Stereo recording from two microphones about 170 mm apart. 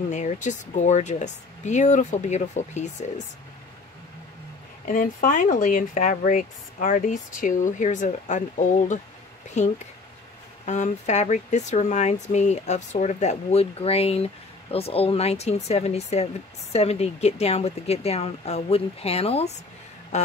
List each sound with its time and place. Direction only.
0.1 s speech: 45° left (ahead or behind)
4.8 s speech: 55° left (ahead or behind); by 19.5 s 35° left (ahead or behind)